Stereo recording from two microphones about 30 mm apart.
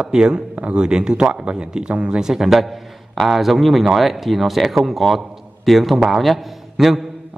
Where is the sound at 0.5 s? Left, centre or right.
Right.